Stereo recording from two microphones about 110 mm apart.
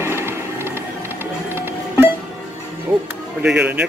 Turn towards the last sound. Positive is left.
turn(degrees=-10)  # may be behind; listen again after turning